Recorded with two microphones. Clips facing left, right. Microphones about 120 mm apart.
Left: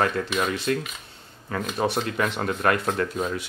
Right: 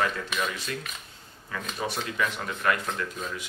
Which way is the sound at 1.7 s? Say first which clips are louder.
Left 5 dB; 60° left (ahead or behind).